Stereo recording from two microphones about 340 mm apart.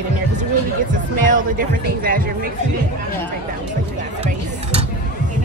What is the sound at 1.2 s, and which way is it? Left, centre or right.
Speech, right.